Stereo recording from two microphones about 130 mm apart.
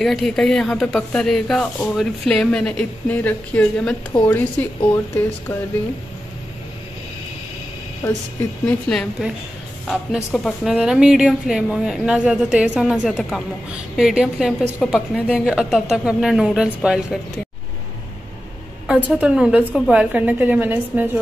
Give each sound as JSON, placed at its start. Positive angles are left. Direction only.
{"t": 0.0, "sound": "a woman's voice", "side_deg": 5}
{"t": 8.0, "sound": "a woman's voice", "side_deg": 15}
{"t": 18.9, "sound": "a woman's voice", "side_deg": -10}